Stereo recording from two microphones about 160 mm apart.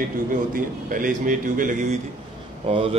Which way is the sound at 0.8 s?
55° right (ahead or behind).